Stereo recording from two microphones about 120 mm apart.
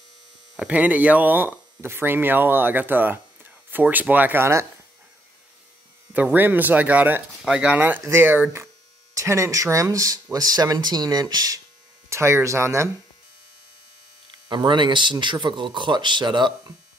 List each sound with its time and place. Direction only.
0.6 s speech: 10° right (ahead or behind)
6.1 s speech: 15° right (ahead or behind)
14.5 s speech: 40° right (ahead or behind)